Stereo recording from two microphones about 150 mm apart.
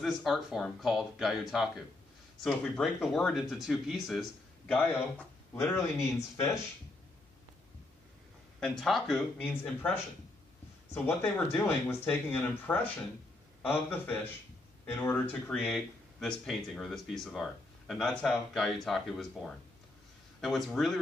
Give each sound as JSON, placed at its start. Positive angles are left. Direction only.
{"t": 0.0, "sound": "speech", "side_deg": 0}
{"t": 5.5, "sound": "speech", "side_deg": 15}
{"t": 8.5, "sound": "speech", "side_deg": 0}